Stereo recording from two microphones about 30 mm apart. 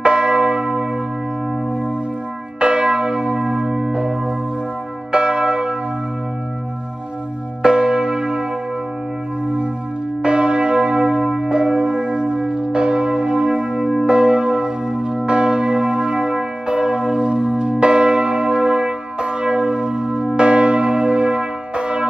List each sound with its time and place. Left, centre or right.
0.0 s church bell: right
2.6 s church bell: right
7.6 s church bell: right
10.2 s church bell: right